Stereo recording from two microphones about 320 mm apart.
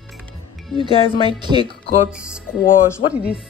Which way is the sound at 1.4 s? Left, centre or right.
Centre.